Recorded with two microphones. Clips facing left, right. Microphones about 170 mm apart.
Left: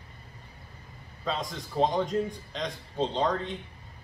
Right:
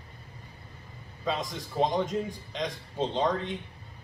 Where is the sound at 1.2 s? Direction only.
Centre (ahead or behind).